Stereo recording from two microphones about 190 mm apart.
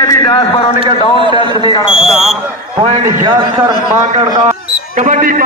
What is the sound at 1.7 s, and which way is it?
Smoke detector, 25° left (ahead or behind).